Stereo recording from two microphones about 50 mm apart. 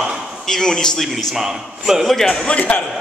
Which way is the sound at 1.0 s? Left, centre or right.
Centre.